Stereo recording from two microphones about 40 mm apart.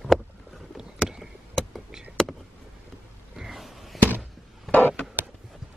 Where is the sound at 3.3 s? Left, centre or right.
Centre.